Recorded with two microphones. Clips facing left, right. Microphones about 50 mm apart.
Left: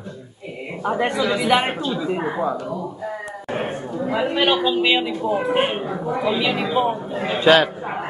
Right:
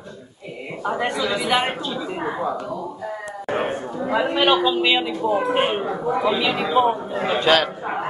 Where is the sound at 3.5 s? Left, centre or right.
Centre.